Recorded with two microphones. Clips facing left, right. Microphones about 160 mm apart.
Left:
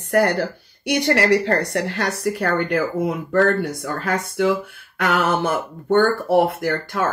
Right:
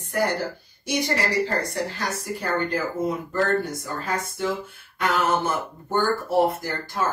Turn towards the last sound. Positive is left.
turn(degrees=70)  # may be behind; listen again after turning